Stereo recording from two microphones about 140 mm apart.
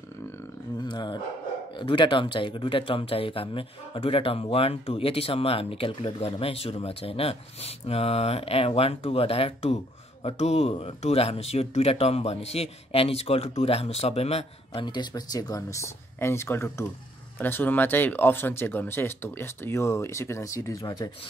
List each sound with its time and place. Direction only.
0.7 s dog: 30° left (ahead or behind)
1.8 s speech: 35° left (ahead or behind)